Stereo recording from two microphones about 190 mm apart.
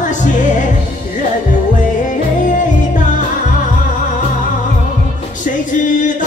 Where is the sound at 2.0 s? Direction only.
40° left (ahead or behind).